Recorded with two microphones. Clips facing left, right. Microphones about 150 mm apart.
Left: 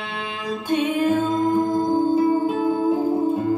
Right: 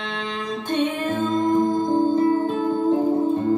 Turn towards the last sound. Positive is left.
turn(degrees=10)  # may be behind; listen again after turning